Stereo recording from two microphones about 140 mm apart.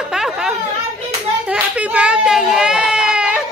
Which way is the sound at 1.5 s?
10° right (ahead or behind).